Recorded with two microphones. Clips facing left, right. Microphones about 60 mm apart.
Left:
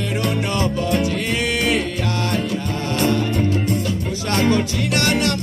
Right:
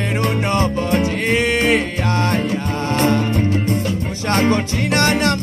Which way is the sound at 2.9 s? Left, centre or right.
Right.